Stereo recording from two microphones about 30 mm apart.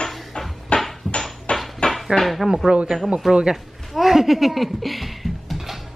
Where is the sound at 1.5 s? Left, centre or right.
Left.